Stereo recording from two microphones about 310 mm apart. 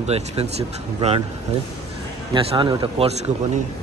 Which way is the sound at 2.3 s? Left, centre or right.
Centre.